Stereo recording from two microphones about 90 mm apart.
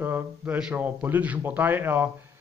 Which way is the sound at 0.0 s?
20° right (ahead or behind).